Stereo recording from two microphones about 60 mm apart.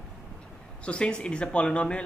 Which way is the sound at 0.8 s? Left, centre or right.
Centre.